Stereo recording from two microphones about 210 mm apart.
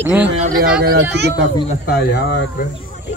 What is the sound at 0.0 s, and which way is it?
Speech, 10° right (ahead or behind).